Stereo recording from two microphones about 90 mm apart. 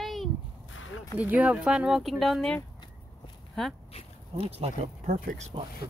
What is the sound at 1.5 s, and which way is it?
Speech, 5° right (ahead or behind).